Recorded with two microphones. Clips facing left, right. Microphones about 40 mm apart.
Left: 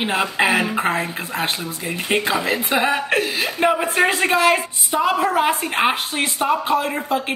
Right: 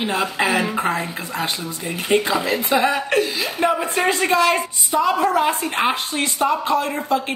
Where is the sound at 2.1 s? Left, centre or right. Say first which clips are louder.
Right 1 dB; left.